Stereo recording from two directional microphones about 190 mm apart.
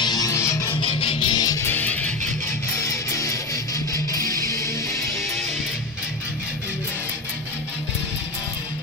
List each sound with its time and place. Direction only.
0.0 s music: 20° left (ahead or behind)
0.8 s music: 30° left (ahead or behind)